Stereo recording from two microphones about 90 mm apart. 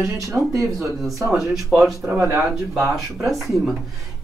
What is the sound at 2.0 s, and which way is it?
Speech, 25° right (ahead or behind).